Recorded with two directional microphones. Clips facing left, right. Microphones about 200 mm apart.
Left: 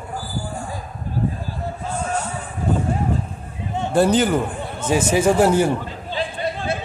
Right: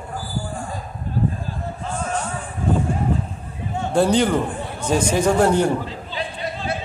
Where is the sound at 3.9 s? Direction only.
5° left (ahead or behind).